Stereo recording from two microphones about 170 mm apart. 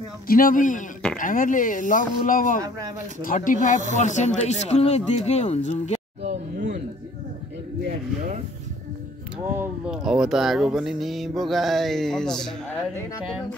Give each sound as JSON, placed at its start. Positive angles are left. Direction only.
{"t": 0.3, "sound": "speech", "side_deg": 55}
{"t": 6.2, "sound": "a sound", "side_deg": -45}
{"t": 7.8, "sound": "speech", "side_deg": -55}
{"t": 9.6, "sound": "speech", "side_deg": -5}